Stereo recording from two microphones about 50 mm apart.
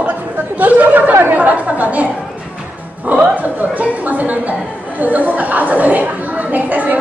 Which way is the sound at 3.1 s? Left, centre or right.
Right.